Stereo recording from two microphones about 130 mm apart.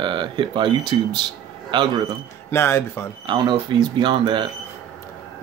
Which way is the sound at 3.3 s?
35° right (ahead or behind).